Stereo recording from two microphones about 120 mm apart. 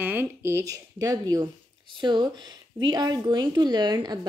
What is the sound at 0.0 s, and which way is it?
A woman's voice, 15° right (ahead or behind).